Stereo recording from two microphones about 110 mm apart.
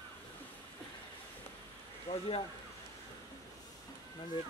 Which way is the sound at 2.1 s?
60° left (ahead or behind).